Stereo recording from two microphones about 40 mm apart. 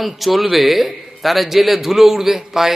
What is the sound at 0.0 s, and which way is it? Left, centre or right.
A man's voice, centre.